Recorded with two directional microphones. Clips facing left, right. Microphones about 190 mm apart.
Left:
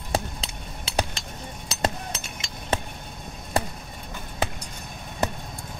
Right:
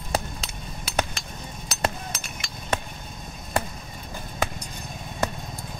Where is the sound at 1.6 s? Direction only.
25° left (ahead or behind).